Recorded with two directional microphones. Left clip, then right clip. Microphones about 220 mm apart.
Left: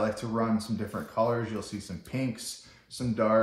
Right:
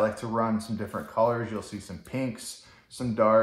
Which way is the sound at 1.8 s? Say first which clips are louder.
Right 2 dB; 25° right (ahead or behind).